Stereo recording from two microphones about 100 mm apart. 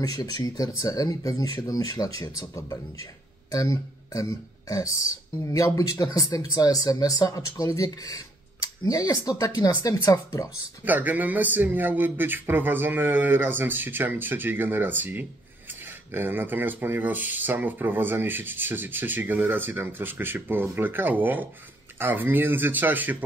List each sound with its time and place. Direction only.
0.0 s speech: 40° left (ahead or behind)
10.9 s speech: 15° right (ahead or behind)